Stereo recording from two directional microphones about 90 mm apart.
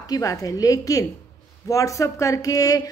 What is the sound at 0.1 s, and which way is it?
A woman's voice, 40° left (ahead or behind).